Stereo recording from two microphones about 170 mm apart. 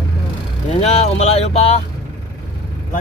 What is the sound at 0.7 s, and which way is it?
Vehicle, 40° left (ahead or behind).